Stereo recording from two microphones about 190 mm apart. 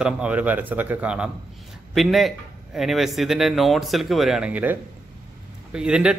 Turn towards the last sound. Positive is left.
turn(degrees=-5)  # may be behind; listen again after turning